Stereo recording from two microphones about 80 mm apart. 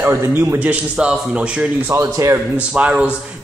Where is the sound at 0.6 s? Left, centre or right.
Centre.